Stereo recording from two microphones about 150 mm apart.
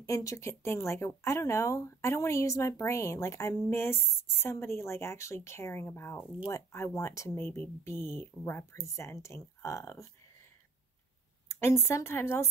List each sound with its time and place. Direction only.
0.0 s speech: 20° left (ahead or behind)
11.6 s speech: 15° left (ahead or behind)